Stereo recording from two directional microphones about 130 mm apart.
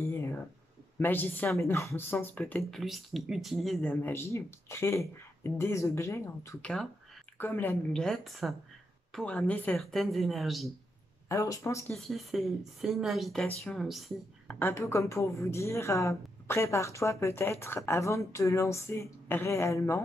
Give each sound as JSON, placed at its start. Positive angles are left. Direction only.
{"t": 0.0, "sound": "a sound", "side_deg": 20}
{"t": 0.9, "sound": "speech", "side_deg": 15}
{"t": 2.7, "sound": "a woman's voice", "side_deg": 0}
{"t": 6.6, "sound": "speech", "side_deg": 5}
{"t": 8.0, "sound": "speech", "side_deg": 0}
{"t": 11.2, "sound": "a woman's voice", "side_deg": 25}
{"t": 11.9, "sound": "speech", "side_deg": 0}
{"t": 14.5, "sound": "a woman's voice", "side_deg": 15}